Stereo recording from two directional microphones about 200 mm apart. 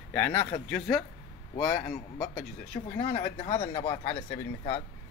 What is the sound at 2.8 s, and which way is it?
Speech, 20° left (ahead or behind).